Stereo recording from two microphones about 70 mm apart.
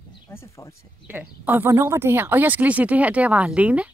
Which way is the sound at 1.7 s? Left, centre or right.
Right.